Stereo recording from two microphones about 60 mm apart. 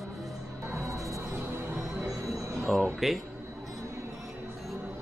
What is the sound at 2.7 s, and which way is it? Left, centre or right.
Speech, centre.